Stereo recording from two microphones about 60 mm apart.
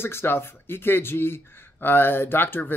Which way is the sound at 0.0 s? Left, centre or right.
Left.